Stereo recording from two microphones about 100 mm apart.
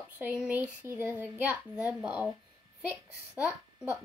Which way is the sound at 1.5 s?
10° right (ahead or behind).